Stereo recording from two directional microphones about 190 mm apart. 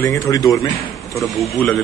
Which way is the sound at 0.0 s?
15° left (ahead or behind).